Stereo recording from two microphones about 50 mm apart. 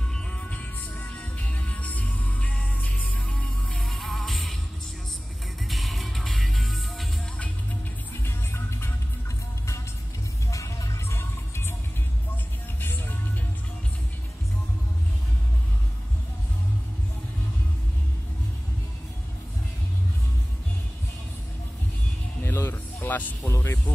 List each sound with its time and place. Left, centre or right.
0.1 s music: left
3.8 s music: centre
5.7 s music: centre
8.2 s music: left
10.5 s music: left
11.1 s music: left
22.4 s music: left
23.0 s music: left
23.4 s speech: left